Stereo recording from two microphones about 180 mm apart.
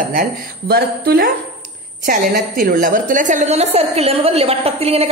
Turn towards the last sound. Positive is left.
turn(degrees=-35)  # may be behind; listen again after turning